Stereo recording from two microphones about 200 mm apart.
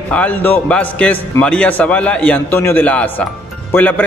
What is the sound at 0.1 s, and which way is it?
A man's voice, 5° left (ahead or behind).